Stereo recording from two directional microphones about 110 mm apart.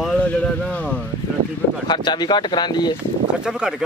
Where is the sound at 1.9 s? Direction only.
40° left (ahead or behind).